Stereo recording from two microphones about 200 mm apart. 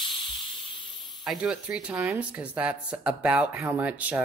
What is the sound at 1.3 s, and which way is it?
Speech, 5° right (ahead or behind).